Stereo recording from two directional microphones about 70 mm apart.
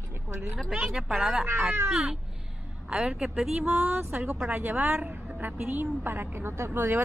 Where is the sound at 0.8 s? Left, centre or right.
Centre.